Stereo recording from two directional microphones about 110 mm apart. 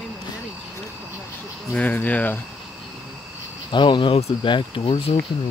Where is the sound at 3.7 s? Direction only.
45° left (ahead or behind).